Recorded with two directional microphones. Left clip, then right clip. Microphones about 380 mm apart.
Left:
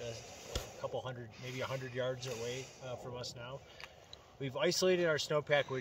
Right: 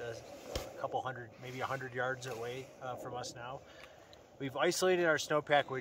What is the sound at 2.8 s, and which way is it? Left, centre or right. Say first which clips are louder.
Speech: right 3 dB; centre.